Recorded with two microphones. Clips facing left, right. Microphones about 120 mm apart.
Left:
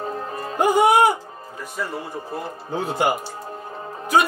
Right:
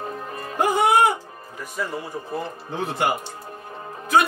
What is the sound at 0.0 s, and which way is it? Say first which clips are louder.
Music: left 3 dB; 30° left (ahead or behind).